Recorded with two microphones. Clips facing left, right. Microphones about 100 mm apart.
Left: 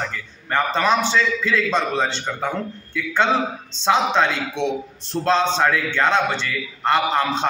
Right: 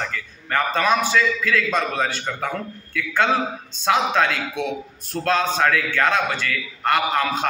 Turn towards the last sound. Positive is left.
turn(degrees=25)  # may be behind; listen again after turning